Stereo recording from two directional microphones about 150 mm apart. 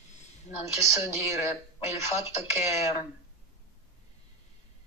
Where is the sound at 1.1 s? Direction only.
45° left (ahead or behind).